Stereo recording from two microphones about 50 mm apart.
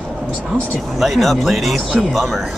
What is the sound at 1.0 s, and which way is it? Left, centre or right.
Speech, centre.